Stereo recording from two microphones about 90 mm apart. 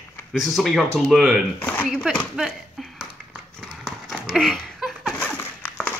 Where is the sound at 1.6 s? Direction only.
20° left (ahead or behind).